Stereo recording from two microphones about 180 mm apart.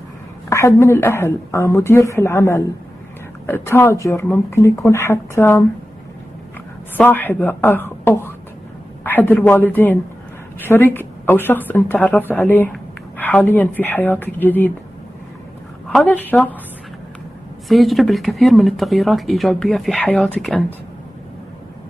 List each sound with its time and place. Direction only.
0.5 s a woman's voice: 15° left (ahead or behind)
7.0 s a woman's voice: 10° left (ahead or behind)
15.9 s a woman's voice: 5° left (ahead or behind)
17.6 s speech: centre (ahead or behind)